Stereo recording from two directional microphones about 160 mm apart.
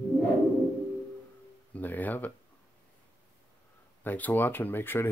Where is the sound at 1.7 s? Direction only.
10° left (ahead or behind).